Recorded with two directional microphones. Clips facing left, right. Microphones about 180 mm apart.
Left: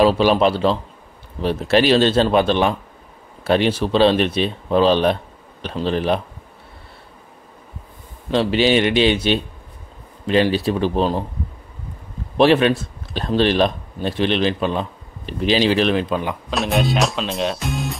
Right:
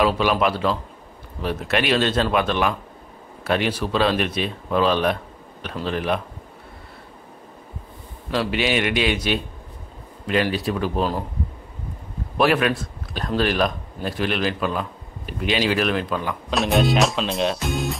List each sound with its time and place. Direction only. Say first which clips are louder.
0.0 s speech: left 5 dB; 30° left (ahead or behind)
8.3 s speech: left 6 dB; 30° left (ahead or behind)
12.4 s speech: left 5 dB; 30° left (ahead or behind)
16.4 s speech: right 2 dB; centre (ahead or behind)